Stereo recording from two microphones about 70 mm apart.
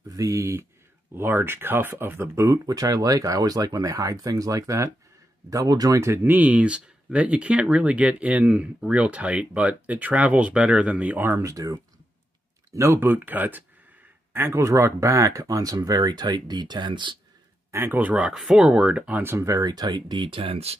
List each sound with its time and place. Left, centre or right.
0.1 s speech: right
1.1 s speech: right
5.9 s speech: right
6.2 s speech: right
11.1 s speech: right
11.4 s speech: right
13.0 s speech: right
14.3 s speech: right
16.0 s speech: right
17.6 s speech: right
18.1 s speech: centre
19.6 s speech: right